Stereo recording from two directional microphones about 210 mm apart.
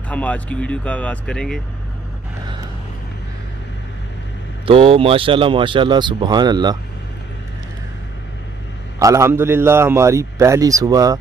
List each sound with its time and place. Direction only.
0.1 s speech: 5° left (ahead or behind)
4.6 s speech: 25° right (ahead or behind)
9.0 s a man's voice: 15° right (ahead or behind)